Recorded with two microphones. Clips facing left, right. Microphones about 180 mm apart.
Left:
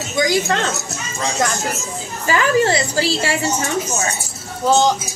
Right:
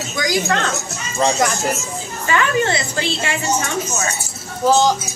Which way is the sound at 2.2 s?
30° left (ahead or behind).